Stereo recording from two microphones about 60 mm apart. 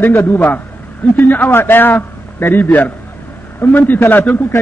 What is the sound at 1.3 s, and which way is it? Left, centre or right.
A man's voice, left.